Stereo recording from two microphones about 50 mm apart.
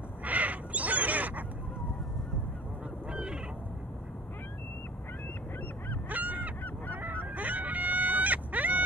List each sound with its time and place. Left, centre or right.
0.2 s crow: right
3.1 s goose: centre
6.0 s honk: right
7.3 s fowl: right